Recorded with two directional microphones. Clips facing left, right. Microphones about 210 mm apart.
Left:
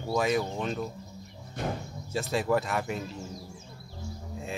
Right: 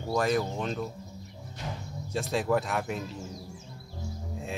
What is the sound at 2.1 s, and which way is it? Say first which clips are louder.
Speech: even; centre (ahead or behind).